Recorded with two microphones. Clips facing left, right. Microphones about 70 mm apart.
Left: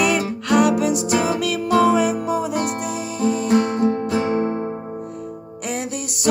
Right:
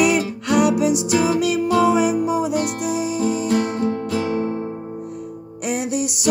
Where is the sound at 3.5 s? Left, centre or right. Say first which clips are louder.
Left 2 dB; left.